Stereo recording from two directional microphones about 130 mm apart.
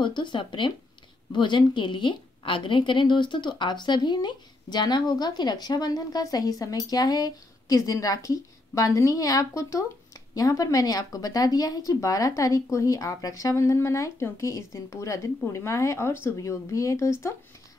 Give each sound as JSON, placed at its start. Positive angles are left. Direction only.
{"t": 0.0, "sound": "a woman's voice", "side_deg": 35}